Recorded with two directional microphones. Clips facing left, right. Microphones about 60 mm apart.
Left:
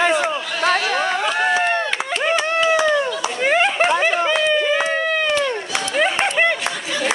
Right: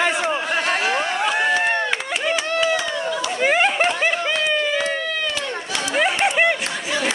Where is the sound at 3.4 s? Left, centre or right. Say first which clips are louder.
Left 1 dB; centre.